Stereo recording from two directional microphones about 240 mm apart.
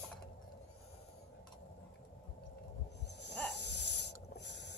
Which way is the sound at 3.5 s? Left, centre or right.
Left.